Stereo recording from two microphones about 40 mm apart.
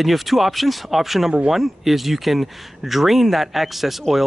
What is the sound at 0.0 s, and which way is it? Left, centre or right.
Speech, centre.